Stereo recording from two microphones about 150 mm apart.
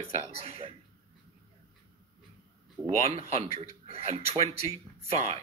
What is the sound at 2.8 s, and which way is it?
A man's voice, 40° right (ahead or behind).